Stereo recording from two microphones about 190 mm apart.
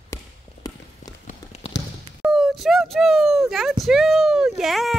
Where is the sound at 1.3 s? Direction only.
35° left (ahead or behind).